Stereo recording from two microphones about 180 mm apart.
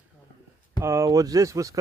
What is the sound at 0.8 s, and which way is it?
Speech, 15° right (ahead or behind).